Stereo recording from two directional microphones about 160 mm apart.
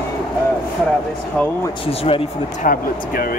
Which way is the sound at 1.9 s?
35° left (ahead or behind).